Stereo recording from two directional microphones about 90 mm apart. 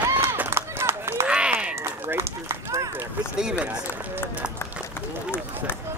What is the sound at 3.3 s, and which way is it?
Run, 10° right (ahead or behind).